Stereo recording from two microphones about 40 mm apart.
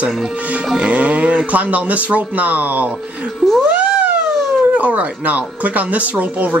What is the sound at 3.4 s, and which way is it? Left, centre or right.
Cat, right.